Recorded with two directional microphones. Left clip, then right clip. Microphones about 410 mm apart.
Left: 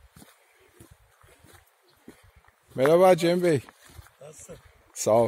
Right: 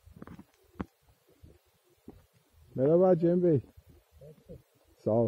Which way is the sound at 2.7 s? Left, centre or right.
Centre.